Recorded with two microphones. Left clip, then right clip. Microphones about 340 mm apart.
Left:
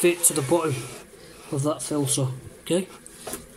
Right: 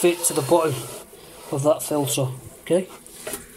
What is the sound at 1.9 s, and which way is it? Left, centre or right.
Speech, right.